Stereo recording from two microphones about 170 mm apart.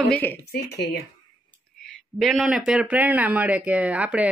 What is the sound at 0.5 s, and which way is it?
Speech, 75° left (ahead or behind).